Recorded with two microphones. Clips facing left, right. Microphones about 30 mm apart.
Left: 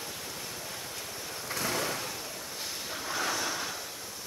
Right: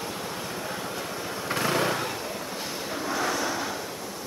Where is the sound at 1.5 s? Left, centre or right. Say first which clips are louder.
Right 7 dB; right.